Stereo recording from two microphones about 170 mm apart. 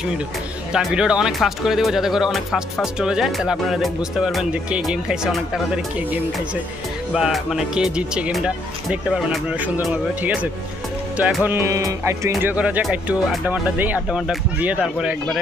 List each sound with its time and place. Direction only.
0.7 s speech: 5° right (ahead or behind)
7.2 s speech: centre (ahead or behind)